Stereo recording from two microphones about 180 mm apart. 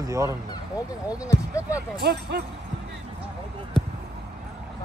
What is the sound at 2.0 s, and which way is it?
Speech, 65° right (ahead or behind).